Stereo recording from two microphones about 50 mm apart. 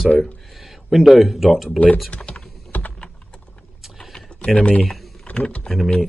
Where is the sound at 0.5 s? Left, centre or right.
Centre.